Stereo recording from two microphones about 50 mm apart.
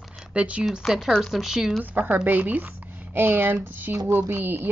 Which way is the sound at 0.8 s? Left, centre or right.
Centre.